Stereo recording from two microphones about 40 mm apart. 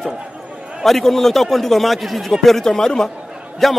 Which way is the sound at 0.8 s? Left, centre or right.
Centre.